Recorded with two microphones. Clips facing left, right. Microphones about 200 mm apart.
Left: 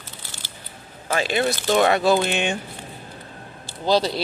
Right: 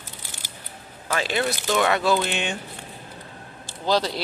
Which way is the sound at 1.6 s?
30° left (ahead or behind).